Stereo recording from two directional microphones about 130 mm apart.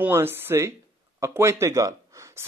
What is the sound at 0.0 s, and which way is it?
A man's voice, 15° right (ahead or behind).